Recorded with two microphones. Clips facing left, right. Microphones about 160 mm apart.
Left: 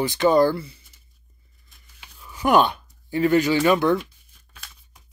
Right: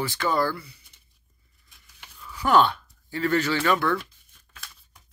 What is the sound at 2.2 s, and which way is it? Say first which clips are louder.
Speech: left 2 dB; 20° left (ahead or behind).